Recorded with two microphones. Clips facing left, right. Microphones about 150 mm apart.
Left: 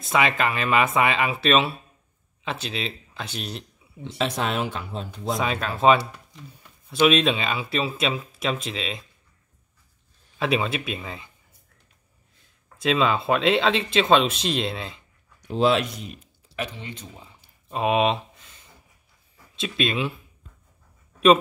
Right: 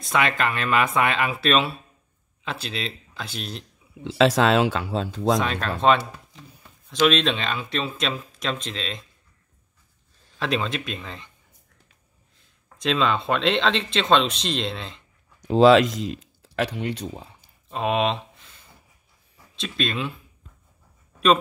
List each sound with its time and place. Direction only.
0.0 s speech: centre (ahead or behind)
4.2 s speech: 90° right
5.4 s speech: 5° left (ahead or behind)
10.4 s speech: 5° left (ahead or behind)
12.7 s speech: 5° left (ahead or behind)
15.4 s speech: 90° right; by 17.3 s 70° right (ahead or behind)
17.6 s speech: 5° left (ahead or behind)
19.5 s speech: 5° left (ahead or behind)